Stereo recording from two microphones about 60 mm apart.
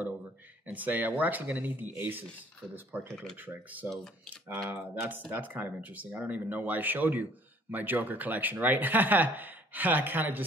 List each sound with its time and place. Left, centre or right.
0.7 s speech: right
3.9 s speech: centre
4.9 s speech: right